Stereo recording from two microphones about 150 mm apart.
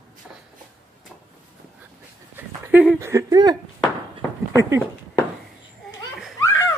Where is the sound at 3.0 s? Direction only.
20° right (ahead or behind).